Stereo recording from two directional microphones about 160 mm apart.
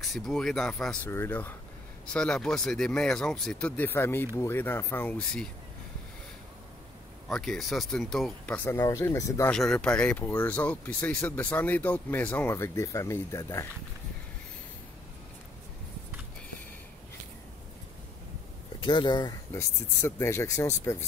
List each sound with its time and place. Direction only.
0.0 s speech: centre (ahead or behind)
1.1 s speech: 15° left (ahead or behind)
7.2 s speech: 5° left (ahead or behind)
9.5 s speech: 5° left (ahead or behind)
18.8 s speech: 30° left (ahead or behind)
19.5 s speech: 15° left (ahead or behind)